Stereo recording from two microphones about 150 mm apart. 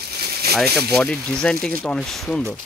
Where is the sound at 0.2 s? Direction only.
90° right.